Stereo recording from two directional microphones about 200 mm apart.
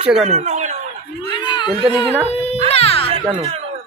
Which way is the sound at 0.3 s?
35° right (ahead or behind).